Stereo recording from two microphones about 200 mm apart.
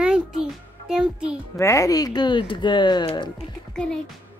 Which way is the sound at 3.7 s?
5° left (ahead or behind).